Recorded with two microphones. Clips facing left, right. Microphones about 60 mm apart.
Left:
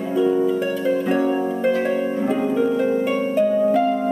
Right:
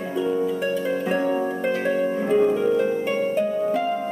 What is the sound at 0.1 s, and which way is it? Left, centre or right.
Harp, centre.